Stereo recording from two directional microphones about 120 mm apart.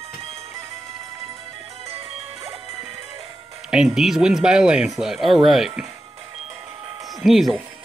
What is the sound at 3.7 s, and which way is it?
Speech, 5° right (ahead or behind).